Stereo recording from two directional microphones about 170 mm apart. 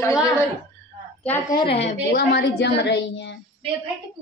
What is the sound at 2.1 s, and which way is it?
A woman's voice, 85° left.